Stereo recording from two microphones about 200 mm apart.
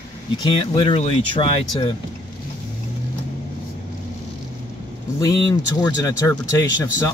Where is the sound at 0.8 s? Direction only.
25° left (ahead or behind).